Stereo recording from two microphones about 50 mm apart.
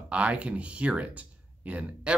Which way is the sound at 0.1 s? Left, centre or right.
Right.